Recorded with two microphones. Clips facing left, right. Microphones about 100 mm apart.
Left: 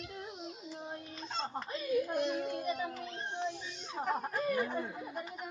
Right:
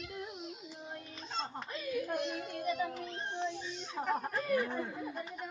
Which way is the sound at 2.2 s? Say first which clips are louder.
Left 4 dB; 25° left (ahead or behind).